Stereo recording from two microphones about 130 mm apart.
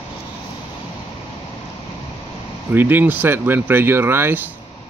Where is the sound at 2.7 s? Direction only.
15° right (ahead or behind).